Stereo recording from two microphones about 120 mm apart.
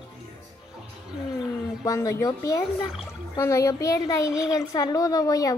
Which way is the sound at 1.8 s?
25° left (ahead or behind).